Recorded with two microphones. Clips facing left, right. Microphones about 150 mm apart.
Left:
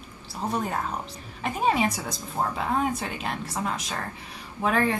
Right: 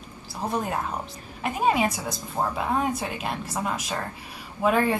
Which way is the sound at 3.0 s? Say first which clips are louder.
Right 1 dB; 10° right (ahead or behind).